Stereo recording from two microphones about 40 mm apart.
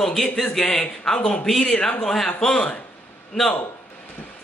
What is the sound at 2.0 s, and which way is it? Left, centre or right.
Speech, centre.